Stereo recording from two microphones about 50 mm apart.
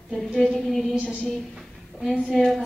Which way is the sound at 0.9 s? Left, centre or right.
Left.